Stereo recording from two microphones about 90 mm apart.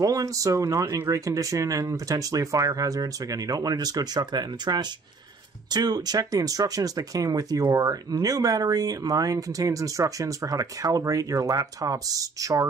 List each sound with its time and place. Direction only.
0.0 s speech: 40° right (ahead or behind)